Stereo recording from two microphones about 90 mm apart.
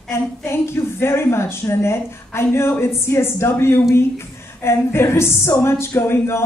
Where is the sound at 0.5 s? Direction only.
25° left (ahead or behind).